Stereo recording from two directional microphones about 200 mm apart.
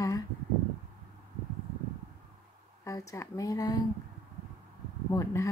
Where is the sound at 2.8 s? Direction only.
15° left (ahead or behind).